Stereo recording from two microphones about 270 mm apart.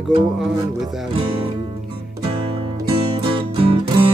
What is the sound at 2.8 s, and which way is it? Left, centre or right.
Music, right.